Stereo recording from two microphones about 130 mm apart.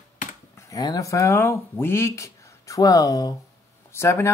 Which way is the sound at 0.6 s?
30° left (ahead or behind).